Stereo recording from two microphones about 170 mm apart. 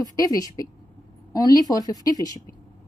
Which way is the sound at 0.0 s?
20° left (ahead or behind).